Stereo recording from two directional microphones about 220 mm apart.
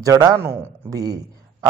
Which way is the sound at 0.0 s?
15° right (ahead or behind).